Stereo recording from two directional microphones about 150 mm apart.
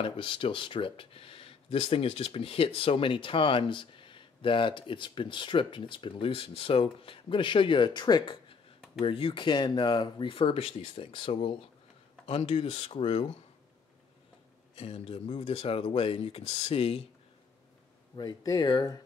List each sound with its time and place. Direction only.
0.0 s speech: 35° left (ahead or behind)
14.8 s speech: 40° left (ahead or behind)
18.1 s speech: 25° left (ahead or behind)